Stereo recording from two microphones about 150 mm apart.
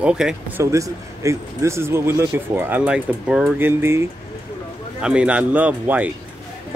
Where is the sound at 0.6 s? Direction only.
20° right (ahead or behind).